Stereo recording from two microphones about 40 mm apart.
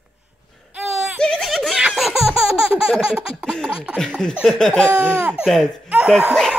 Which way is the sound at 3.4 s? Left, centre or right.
Centre.